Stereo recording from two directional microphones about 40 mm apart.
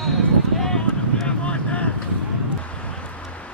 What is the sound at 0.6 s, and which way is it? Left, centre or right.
Clip-clop, centre.